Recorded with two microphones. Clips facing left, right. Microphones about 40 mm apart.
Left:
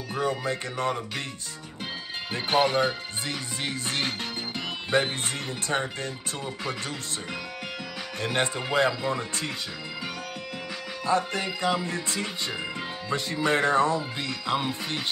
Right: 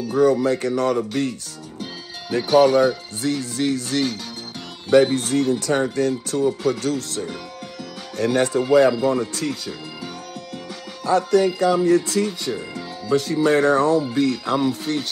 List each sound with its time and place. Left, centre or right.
0.1 s speech: left
2.3 s speech: left
11.1 s speech: left